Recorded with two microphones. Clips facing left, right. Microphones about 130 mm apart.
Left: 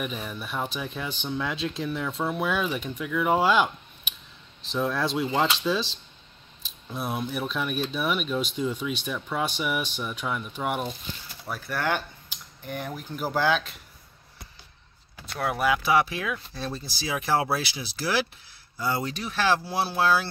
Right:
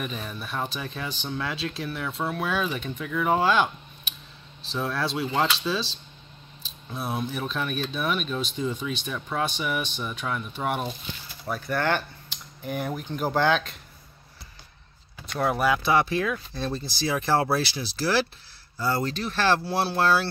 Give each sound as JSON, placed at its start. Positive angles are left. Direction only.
{"t": 0.0, "sound": "speech", "side_deg": 10}
{"t": 2.0, "sound": "speech", "side_deg": 0}
{"t": 2.3, "sound": "speech", "side_deg": 15}
{"t": 4.6, "sound": "a sound", "side_deg": 15}
{"t": 4.9, "sound": "speech", "side_deg": 15}
{"t": 12.6, "sound": "speech", "side_deg": -5}
{"t": 15.3, "sound": "speech", "side_deg": 0}